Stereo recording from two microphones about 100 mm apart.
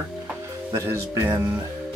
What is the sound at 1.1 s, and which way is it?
Speech, 30° right (ahead or behind).